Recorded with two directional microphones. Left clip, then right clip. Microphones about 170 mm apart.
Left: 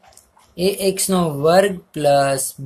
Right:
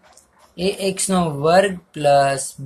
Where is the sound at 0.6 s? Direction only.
20° left (ahead or behind).